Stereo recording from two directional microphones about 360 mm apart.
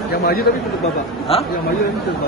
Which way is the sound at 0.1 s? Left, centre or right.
Left.